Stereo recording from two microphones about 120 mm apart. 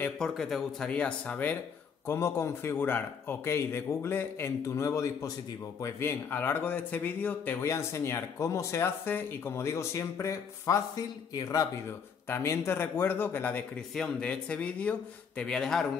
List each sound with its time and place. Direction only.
0.2 s speech: centre (ahead or behind)